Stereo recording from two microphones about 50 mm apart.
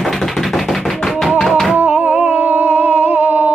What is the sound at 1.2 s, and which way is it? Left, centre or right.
Music, centre.